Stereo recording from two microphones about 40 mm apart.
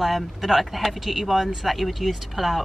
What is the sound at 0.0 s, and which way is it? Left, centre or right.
A woman's voice, centre.